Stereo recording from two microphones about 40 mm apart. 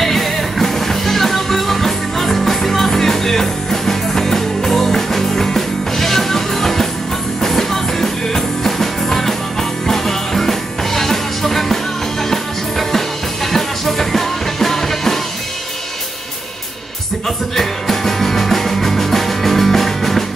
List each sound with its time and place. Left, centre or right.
0.0 s music: centre
17.6 s music: centre